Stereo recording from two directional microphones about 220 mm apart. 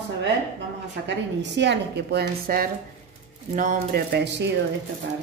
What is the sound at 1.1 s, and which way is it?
A woman's voice, 55° right (ahead or behind).